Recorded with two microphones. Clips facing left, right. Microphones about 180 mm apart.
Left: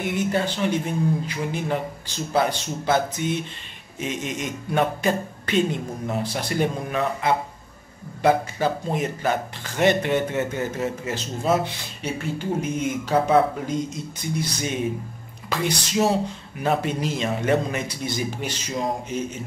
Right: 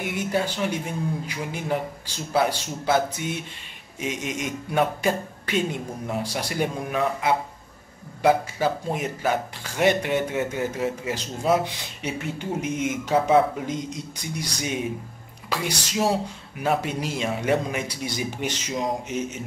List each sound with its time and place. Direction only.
0.0 s speech: 10° right (ahead or behind)
12.0 s speech: 30° left (ahead or behind)
13.7 s speech: 15° right (ahead or behind)